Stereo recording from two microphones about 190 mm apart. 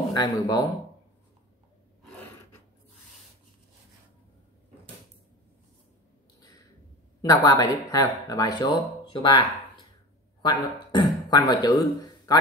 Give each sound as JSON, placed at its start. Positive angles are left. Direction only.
{"t": 0.1, "sound": "speech", "side_deg": 20}
{"t": 7.4, "sound": "speech", "side_deg": 20}
{"t": 10.4, "sound": "speech", "side_deg": 25}